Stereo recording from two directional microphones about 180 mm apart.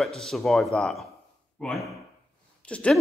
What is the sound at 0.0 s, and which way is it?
Speech, centre (ahead or behind).